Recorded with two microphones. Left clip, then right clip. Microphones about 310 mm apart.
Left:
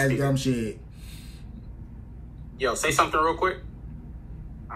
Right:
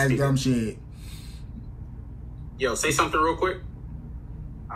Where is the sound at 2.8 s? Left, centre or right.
Centre.